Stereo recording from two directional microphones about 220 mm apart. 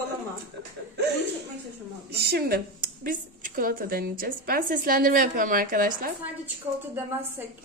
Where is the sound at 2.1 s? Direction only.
45° right (ahead or behind).